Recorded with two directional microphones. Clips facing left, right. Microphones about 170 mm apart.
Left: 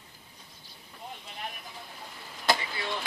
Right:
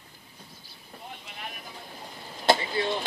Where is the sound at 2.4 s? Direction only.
30° right (ahead or behind).